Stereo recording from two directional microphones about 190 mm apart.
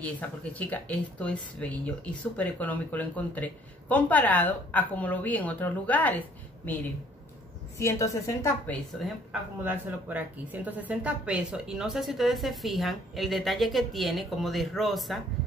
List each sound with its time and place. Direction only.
0.0 s a woman's voice: 10° left (ahead or behind)
9.3 s a woman's voice: 10° right (ahead or behind)